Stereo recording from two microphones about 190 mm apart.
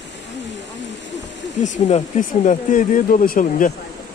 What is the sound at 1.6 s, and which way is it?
Speech, 35° left (ahead or behind).